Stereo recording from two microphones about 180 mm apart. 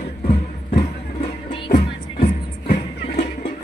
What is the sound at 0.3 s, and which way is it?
Music, 40° left (ahead or behind).